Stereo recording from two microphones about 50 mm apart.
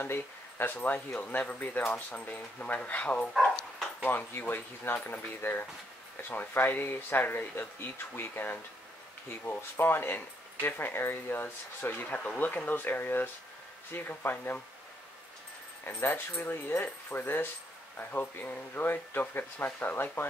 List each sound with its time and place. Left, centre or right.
0.0 s speech: left
4.0 s speech: left
15.8 s speech: left